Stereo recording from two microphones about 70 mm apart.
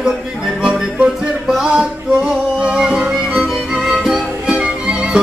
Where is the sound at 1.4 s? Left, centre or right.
Centre.